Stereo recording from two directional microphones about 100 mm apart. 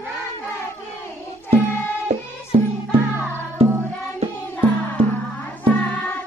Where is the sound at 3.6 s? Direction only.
75° right (ahead or behind).